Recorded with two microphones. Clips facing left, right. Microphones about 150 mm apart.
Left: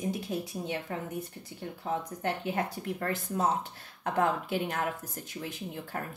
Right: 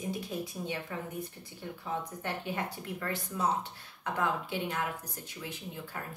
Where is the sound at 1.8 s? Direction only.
45° left (ahead or behind).